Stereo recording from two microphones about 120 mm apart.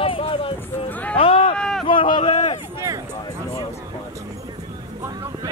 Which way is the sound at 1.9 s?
45° left (ahead or behind).